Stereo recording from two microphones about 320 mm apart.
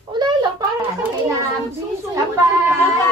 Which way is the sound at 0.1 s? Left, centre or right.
Centre.